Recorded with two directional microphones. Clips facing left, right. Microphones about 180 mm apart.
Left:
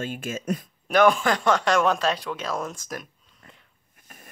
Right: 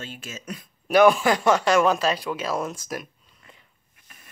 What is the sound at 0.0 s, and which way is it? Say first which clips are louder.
Speech: left 7 dB; 50° left (ahead or behind).